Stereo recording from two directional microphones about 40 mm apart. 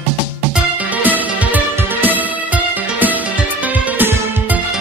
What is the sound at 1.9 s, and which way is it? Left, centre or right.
Music, right.